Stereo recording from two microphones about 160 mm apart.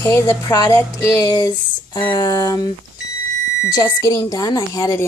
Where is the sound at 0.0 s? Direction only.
20° left (ahead or behind).